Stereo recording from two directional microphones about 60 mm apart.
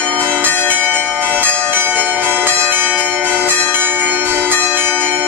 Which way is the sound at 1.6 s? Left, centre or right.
Right.